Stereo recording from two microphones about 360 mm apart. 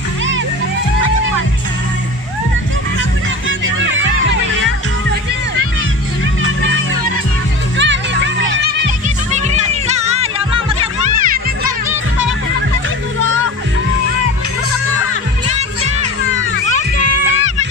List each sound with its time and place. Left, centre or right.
7.7 s music: right
9.3 s music: centre